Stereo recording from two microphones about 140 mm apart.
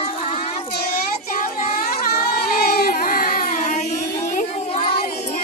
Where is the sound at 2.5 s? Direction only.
90° left; by 4.5 s 65° left (ahead or behind).